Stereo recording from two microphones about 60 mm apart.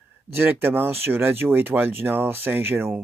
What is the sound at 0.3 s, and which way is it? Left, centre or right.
Speech, right.